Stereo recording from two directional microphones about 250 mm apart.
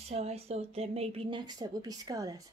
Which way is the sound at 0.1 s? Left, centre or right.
Right.